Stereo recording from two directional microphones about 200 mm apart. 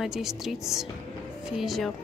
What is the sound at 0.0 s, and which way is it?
A woman's voice, centre (ahead or behind).